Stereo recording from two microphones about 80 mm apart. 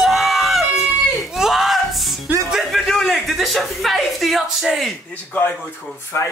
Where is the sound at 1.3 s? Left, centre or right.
Centre.